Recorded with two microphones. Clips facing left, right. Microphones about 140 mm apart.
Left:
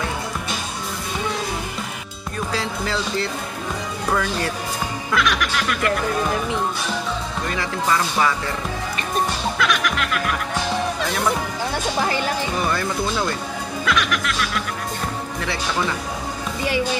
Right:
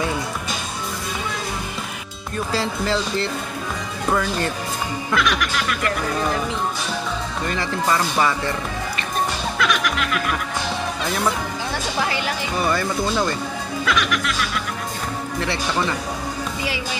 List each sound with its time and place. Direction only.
2.5 s speech: centre (ahead or behind)
9.6 s music: centre (ahead or behind)
12.5 s speech: centre (ahead or behind)